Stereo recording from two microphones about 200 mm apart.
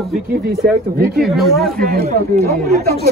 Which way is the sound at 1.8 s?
50° right (ahead or behind).